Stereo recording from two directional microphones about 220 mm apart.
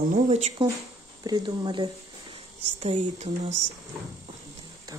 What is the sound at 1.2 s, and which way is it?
A woman's voice, 20° right (ahead or behind).